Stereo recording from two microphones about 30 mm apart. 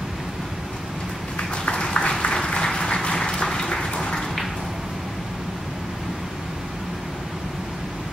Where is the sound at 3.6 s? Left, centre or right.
Centre.